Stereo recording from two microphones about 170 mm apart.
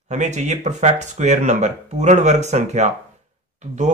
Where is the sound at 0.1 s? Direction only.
45° right (ahead or behind).